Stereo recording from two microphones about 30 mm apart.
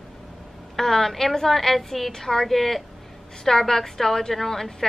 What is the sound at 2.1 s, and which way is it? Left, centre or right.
Speech, centre.